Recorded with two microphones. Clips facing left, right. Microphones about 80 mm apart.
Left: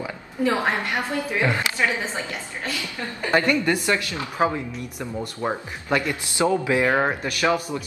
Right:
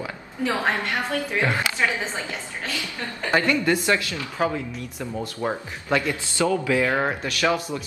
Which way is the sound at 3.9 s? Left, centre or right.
Left.